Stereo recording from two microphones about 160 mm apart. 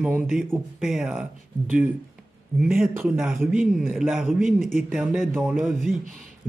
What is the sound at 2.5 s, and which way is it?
Speech, 5° right (ahead or behind).